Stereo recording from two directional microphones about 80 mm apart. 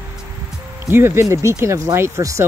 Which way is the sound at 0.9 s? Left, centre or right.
Right.